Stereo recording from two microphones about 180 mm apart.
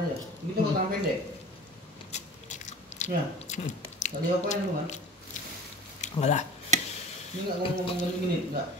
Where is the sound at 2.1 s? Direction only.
40° left (ahead or behind).